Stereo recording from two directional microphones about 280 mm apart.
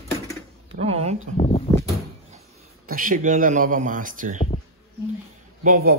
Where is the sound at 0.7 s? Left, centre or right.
Right.